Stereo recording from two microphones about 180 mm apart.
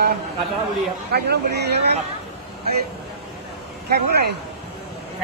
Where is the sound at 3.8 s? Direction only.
60° right (ahead or behind).